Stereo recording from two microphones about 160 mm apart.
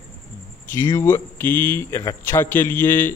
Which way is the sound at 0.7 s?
15° left (ahead or behind).